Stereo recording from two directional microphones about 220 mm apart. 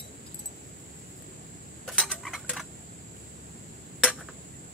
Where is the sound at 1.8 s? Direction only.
5° left (ahead or behind).